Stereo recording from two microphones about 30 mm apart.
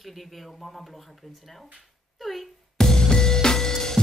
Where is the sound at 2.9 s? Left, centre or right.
Left.